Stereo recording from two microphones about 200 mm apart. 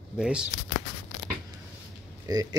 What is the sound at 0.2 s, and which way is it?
Speech, 5° right (ahead or behind).